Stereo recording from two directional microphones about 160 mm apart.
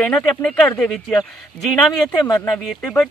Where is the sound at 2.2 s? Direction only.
25° left (ahead or behind).